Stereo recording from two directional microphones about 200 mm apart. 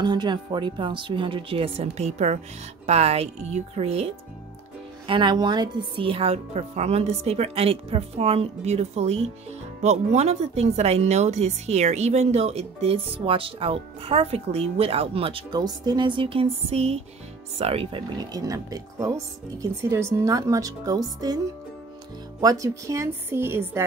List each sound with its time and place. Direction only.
0.0 s speech: 20° right (ahead or behind)
22.4 s speech: 15° right (ahead or behind)